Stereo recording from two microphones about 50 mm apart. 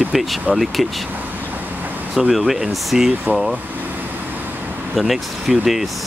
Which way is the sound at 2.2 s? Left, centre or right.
Centre.